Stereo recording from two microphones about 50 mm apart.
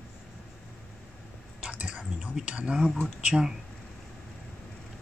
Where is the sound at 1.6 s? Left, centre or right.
Right.